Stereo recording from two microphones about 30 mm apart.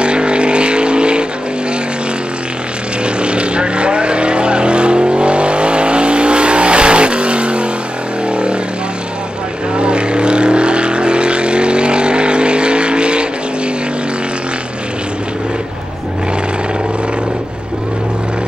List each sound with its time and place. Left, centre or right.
0.0 s vehicle: right
3.2 s vehicle: right
9.8 s vehicle: right